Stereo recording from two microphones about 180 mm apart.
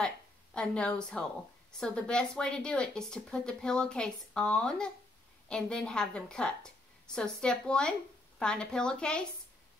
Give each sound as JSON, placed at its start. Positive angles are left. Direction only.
{"t": 0.0, "sound": "a woman's voice", "side_deg": 5}